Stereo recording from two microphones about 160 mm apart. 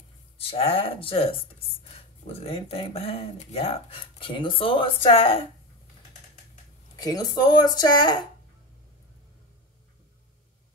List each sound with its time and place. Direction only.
0.4 s speech: 35° left (ahead or behind)
7.0 s speech: 25° left (ahead or behind)